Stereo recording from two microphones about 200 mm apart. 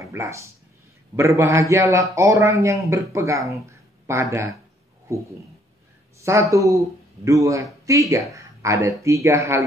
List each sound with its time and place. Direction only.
0.0 s a man's voice: 15° right (ahead or behind)
6.1 s a man's voice: 15° right (ahead or behind)